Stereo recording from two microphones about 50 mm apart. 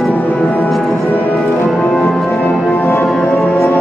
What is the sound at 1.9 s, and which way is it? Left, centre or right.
Music, centre.